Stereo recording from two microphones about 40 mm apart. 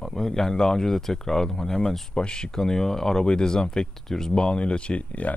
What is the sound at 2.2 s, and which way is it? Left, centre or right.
Speech, left.